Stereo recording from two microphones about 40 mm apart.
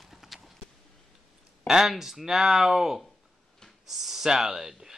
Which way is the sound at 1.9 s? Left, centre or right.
Centre.